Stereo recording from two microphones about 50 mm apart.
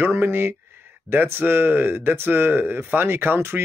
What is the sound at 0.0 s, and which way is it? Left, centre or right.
Speech, right.